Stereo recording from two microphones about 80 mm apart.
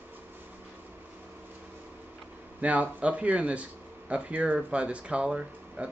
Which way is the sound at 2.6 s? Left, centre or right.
Centre.